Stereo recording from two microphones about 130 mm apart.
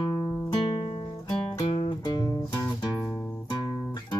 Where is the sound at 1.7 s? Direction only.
35° left (ahead or behind).